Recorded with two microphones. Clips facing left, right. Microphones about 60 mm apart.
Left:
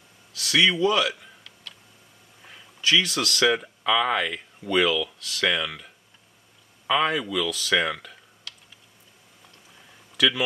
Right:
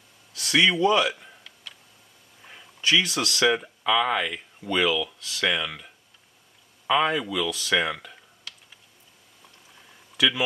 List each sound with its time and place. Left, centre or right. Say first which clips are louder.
0.4 s speech: even; centre
0.7 s tick-tock: right 1 dB; centre
2.8 s speech: even; centre
6.9 s speech: even; centre
10.1 s speech: left 1 dB; centre